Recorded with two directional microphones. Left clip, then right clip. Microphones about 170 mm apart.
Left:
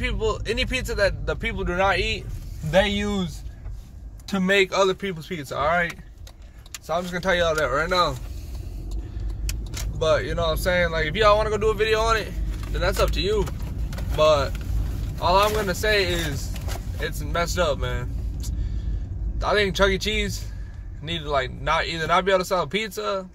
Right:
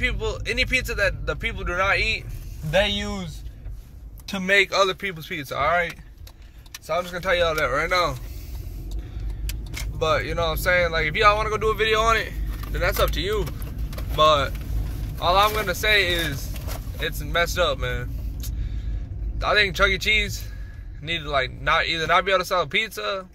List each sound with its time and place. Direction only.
0.0 s speech: 20° left (ahead or behind)
4.5 s speech: 10° left (ahead or behind)
6.9 s speech: 15° left (ahead or behind)
9.9 s speech: 10° left (ahead or behind)
19.4 s speech: 15° left (ahead or behind)